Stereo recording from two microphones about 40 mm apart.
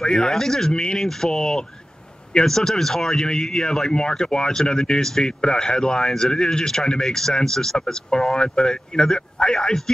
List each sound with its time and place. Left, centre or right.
0.0 s speech: centre